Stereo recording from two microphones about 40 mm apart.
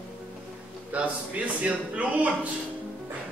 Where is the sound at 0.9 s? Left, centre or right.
Right.